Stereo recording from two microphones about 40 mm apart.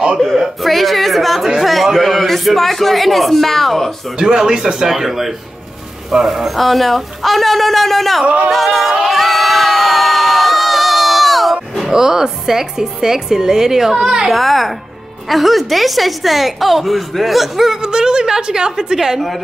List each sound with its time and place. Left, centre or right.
0.4 s a woman's voice: centre
1.6 s a sound: centre
4.2 s a woman's voice: centre
9.0 s crowd: centre
11.9 s speech: centre
14.3 s a woman's voice: centre
17.8 s speech: centre